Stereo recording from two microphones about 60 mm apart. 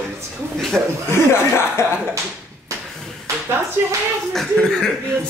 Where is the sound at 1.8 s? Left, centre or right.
Left.